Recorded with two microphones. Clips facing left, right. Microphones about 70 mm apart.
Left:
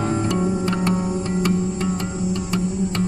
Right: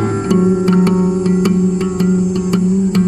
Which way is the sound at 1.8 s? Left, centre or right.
Right.